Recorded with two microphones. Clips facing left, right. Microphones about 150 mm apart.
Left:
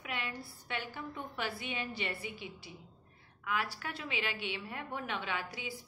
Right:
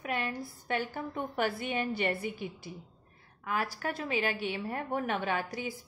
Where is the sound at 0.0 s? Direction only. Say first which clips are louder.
Right 7 dB; 45° right (ahead or behind).